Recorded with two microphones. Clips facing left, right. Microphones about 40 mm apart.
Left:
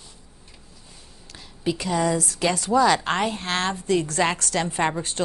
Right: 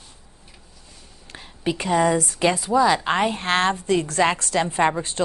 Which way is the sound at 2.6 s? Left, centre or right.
Centre.